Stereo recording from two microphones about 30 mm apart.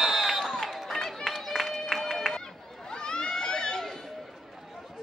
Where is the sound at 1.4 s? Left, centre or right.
Centre.